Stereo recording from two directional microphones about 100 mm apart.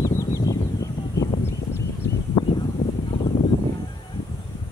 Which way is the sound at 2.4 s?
50° left (ahead or behind).